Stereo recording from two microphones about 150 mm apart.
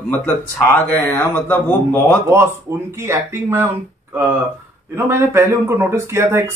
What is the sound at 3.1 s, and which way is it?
Speech, 15° right (ahead or behind).